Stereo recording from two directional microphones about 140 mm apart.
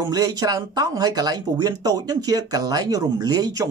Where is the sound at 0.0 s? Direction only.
25° right (ahead or behind).